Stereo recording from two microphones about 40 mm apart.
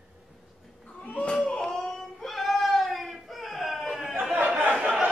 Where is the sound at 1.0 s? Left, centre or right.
Left.